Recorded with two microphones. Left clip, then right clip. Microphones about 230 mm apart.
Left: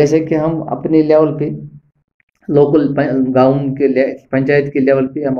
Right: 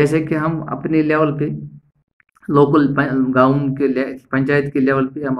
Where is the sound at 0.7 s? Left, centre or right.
Right.